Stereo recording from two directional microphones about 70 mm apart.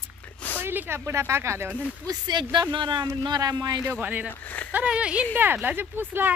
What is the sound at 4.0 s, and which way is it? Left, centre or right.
Speech, right.